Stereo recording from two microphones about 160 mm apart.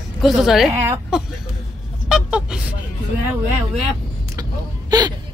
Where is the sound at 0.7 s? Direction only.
15° right (ahead or behind).